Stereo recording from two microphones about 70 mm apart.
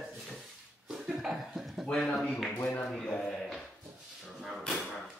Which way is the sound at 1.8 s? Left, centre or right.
Centre.